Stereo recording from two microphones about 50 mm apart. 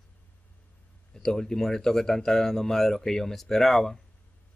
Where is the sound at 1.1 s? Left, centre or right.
Centre.